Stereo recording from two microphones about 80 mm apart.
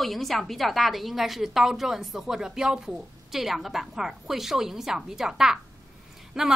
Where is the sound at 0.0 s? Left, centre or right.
Centre.